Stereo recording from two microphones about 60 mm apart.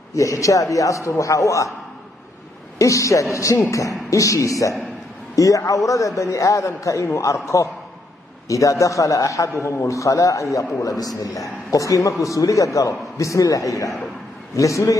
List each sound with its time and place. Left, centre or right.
0.1 s a man's voice: left
2.8 s a man's voice: left
8.5 s a man's voice: left
9.5 s a man's voice: left